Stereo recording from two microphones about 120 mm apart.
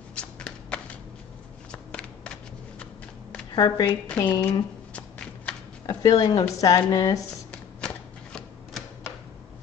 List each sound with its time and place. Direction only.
0.1 s shuffling cards: 10° left (ahead or behind)
3.5 s speech: 35° left (ahead or behind)
4.9 s shuffling cards: 10° left (ahead or behind)
5.9 s speech: 35° left (ahead or behind)
7.8 s shuffling cards: 5° left (ahead or behind)